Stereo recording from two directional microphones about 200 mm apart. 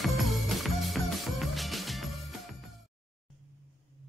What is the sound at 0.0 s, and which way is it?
Music, centre (ahead or behind).